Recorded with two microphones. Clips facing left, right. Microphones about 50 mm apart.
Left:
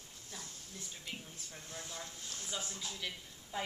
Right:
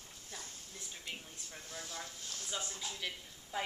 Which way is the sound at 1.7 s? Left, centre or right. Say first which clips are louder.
Right 1 dB; centre.